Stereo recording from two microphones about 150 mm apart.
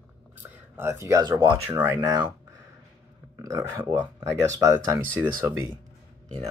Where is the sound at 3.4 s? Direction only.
20° right (ahead or behind).